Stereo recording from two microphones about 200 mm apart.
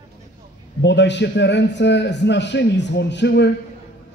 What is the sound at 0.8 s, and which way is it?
A man's voice, 60° left (ahead or behind).